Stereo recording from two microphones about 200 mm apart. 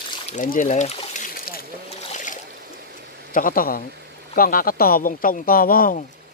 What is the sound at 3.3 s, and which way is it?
Speech, 45° left (ahead or behind).